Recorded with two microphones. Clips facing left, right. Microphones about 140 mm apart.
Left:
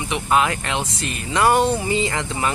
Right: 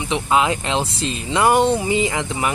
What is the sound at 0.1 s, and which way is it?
Speech, 20° right (ahead or behind).